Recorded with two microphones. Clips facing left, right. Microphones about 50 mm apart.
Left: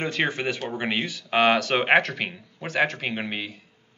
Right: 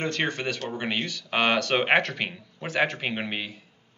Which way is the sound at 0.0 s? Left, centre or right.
Centre.